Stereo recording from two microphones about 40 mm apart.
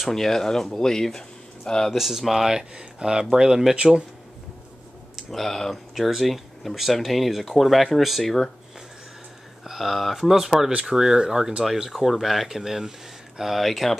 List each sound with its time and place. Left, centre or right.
0.0 s speech: centre
2.0 s speech: centre
2.7 s speech: right
5.3 s speech: centre
9.7 s speech: centre